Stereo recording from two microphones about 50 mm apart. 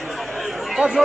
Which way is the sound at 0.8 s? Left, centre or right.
Right.